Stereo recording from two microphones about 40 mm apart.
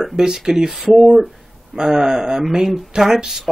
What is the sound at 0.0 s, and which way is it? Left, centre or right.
Speech, centre.